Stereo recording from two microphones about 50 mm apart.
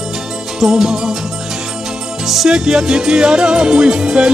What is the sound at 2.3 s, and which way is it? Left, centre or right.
Music, centre.